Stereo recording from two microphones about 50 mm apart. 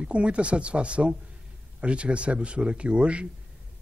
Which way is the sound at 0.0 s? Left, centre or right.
Right.